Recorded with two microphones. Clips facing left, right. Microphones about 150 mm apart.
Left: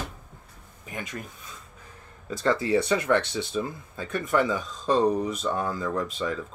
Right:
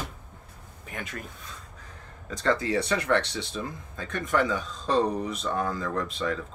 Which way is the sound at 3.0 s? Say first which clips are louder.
Left 2 dB; 20° left (ahead or behind).